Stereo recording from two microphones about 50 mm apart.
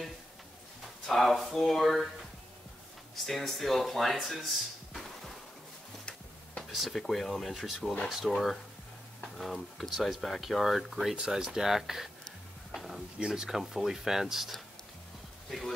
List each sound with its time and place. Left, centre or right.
1.0 s a sound: centre
1.6 s speech: centre
3.2 s speech: centre
6.7 s speech: centre
11.1 s speech: centre
12.7 s a sound: centre
13.2 s speech: centre